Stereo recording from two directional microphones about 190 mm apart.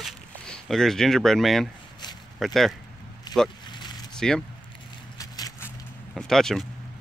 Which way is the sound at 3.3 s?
20° left (ahead or behind).